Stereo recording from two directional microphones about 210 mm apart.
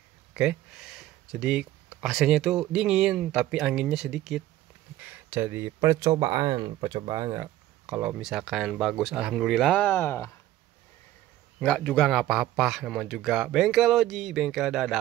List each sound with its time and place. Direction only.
0.3 s speech: 5° right (ahead or behind)
7.8 s speech: 5° right (ahead or behind); by 10.3 s 10° left (ahead or behind)
11.6 s speech: 5° left (ahead or behind)